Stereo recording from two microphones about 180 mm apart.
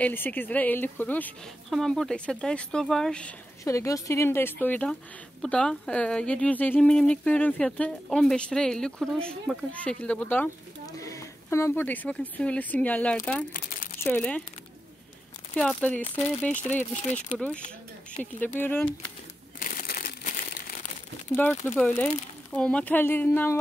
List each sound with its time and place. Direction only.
0.0 s a woman's voice: 10° left (ahead or behind)
3.6 s a woman's voice: 15° left (ahead or behind)
15.5 s a woman's voice: 5° left (ahead or behind)
18.4 s a woman's voice: 10° left (ahead or behind)
19.6 s crushing: 50° left (ahead or behind)
21.4 s a woman's voice: 5° left (ahead or behind)